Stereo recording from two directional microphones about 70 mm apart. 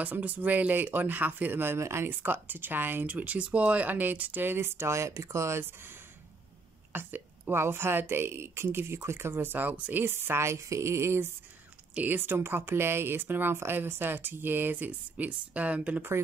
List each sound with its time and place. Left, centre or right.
0.0 s speech: right
6.9 s a woman's voice: right